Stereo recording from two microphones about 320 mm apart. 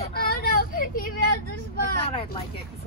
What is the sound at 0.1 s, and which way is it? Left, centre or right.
Vehicle, left.